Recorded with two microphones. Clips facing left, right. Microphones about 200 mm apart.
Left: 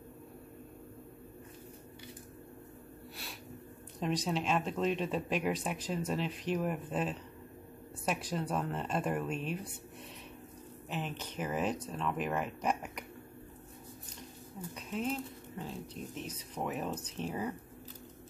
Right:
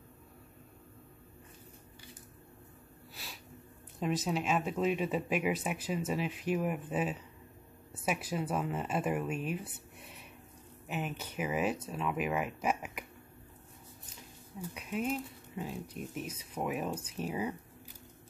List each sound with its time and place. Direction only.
4.0 s speech: 5° right (ahead or behind)
10.9 s speech: 10° right (ahead or behind)
14.7 s speech: 10° right (ahead or behind)